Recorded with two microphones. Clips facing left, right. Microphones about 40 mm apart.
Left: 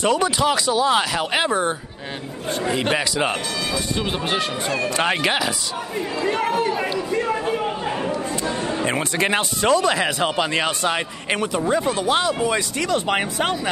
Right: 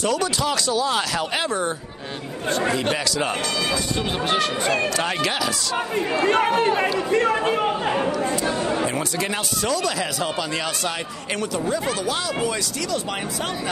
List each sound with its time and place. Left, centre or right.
0.0 s speech: left
2.7 s speech: centre
4.9 s speech: left
6.1 s a man's voice: right
7.2 s a man's voice: right
8.2 s a man's voice: right
8.8 s speech: left